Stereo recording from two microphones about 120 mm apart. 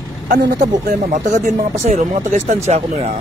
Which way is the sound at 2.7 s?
55° right (ahead or behind).